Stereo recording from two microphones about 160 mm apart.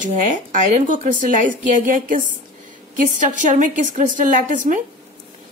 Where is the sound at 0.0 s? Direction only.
55° right (ahead or behind).